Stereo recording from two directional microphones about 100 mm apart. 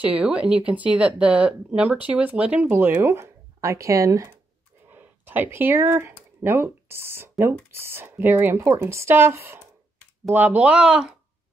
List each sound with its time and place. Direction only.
0.0 s speech: 15° right (ahead or behind); by 4.4 s 30° right (ahead or behind)
4.8 s speech: 20° right (ahead or behind)